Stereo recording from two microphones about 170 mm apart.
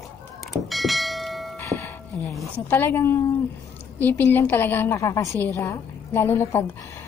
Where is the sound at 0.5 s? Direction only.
Centre (ahead or behind).